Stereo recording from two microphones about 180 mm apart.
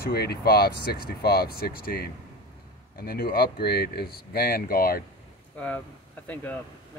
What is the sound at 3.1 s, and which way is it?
Speech, 55° left (ahead or behind).